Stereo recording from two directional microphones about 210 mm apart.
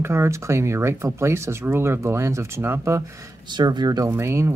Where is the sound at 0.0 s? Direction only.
10° right (ahead or behind).